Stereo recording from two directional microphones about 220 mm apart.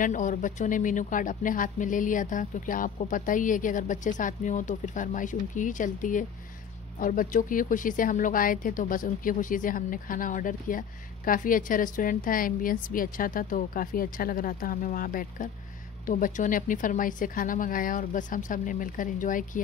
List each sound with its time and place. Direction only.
0.0 s a woman's voice: 35° left (ahead or behind)